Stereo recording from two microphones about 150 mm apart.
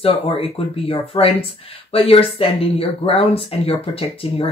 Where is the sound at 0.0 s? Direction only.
40° left (ahead or behind).